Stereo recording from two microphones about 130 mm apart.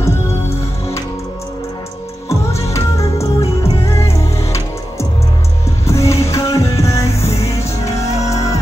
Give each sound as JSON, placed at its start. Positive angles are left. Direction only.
{"t": 0.0, "sound": "music", "side_deg": 20}
{"t": 2.2, "sound": "music", "side_deg": 25}
{"t": 5.9, "sound": "music", "side_deg": 25}